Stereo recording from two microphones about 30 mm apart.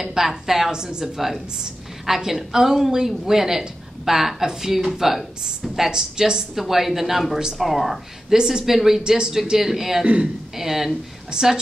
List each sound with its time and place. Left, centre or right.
0.0 s a woman's voice: centre
5.9 s speech: right
6.7 s a woman's voice: centre
8.3 s a woman's voice: centre
11.3 s speech: right